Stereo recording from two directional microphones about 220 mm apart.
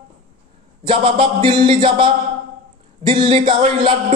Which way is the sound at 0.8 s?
25° right (ahead or behind).